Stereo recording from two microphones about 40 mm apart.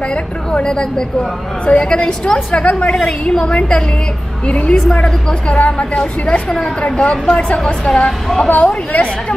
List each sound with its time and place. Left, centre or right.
0.1 s a woman's voice: left
2.6 s a woman's voice: left
8.5 s a woman's voice: left